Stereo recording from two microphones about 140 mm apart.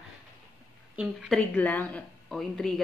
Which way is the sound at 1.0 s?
5° right (ahead or behind).